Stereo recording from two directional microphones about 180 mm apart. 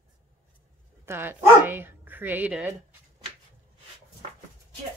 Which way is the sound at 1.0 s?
10° right (ahead or behind).